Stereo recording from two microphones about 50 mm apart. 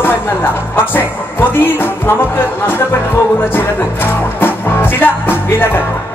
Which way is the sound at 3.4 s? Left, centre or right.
Left.